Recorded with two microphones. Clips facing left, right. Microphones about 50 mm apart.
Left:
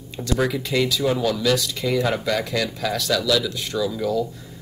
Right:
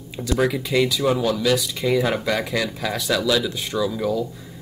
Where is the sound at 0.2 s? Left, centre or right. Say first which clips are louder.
Right 1 dB; centre.